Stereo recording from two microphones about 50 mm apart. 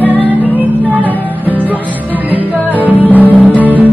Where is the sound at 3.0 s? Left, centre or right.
Left.